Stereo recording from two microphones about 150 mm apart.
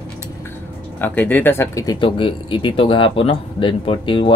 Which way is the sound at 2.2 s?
35° left (ahead or behind).